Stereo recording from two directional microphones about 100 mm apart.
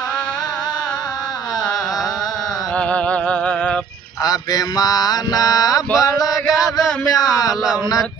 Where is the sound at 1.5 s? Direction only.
Centre (ahead or behind).